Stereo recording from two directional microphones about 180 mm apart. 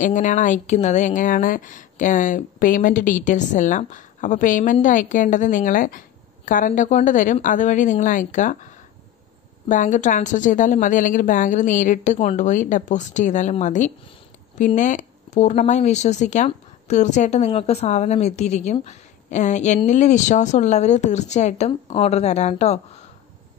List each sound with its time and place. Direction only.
0.0 s a woman's voice: 45° left (ahead or behind)
9.7 s a woman's voice: 45° left (ahead or behind)